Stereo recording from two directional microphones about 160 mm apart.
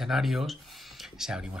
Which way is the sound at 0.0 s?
Centre (ahead or behind).